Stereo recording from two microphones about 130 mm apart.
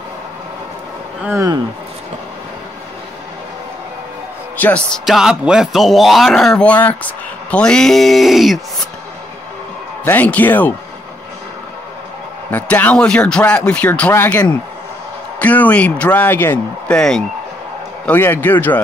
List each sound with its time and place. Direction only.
1.2 s speech: 25° right (ahead or behind)
4.6 s speech: 10° left (ahead or behind)
10.0 s speech: 15° left (ahead or behind)
12.4 s speech: 15° left (ahead or behind)